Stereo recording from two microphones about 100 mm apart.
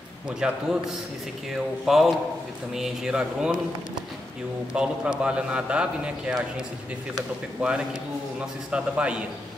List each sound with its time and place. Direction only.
0.4 s a man's voice: 10° right (ahead or behind)
1.9 s a man's voice: 5° right (ahead or behind)
4.7 s a man's voice: 10° right (ahead or behind)
7.6 s a man's voice: 15° right (ahead or behind)